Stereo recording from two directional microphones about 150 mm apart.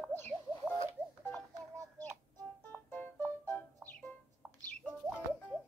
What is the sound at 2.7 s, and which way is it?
Music, 10° left (ahead or behind).